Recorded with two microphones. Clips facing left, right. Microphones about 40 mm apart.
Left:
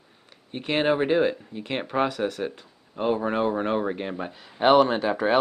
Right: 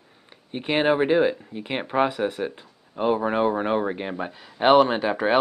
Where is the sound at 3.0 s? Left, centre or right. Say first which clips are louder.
Right 2 dB; centre.